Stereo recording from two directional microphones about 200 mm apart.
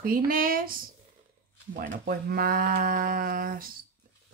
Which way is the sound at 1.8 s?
45° right (ahead or behind).